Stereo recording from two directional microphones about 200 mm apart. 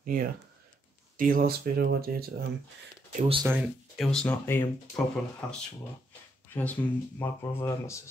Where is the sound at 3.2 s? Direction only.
25° right (ahead or behind).